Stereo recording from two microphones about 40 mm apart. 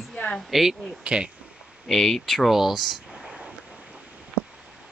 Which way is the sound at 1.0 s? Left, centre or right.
Right.